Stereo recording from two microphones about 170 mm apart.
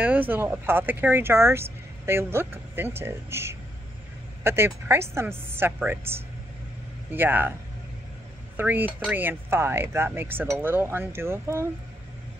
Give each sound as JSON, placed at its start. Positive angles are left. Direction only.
{"t": 0.0, "sound": "speech", "side_deg": -10}
{"t": 7.1, "sound": "speech", "side_deg": -10}
{"t": 8.5, "sound": "speech", "side_deg": -10}